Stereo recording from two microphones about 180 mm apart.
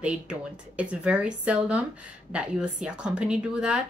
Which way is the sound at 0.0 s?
5° right (ahead or behind).